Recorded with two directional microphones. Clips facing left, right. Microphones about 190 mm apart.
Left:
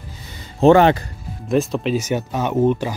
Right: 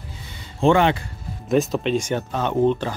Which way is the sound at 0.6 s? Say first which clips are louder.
Left 5 dB; 40° left (ahead or behind).